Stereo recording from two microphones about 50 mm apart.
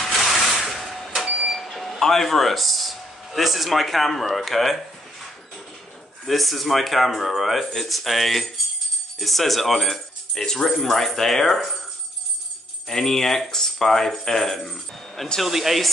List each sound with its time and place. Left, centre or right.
0.0 s printer: centre
1.2 s printer: right
1.5 s speech: centre
6.2 s speech: centre
12.8 s speech: centre